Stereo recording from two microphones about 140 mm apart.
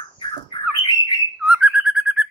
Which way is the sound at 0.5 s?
35° left (ahead or behind).